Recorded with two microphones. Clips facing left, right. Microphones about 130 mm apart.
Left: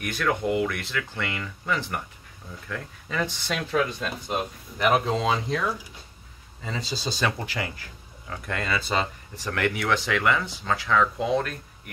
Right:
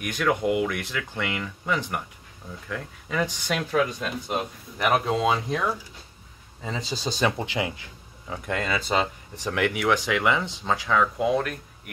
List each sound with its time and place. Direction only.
0.0 s speech: 15° right (ahead or behind)
6.6 s speech: 15° right (ahead or behind)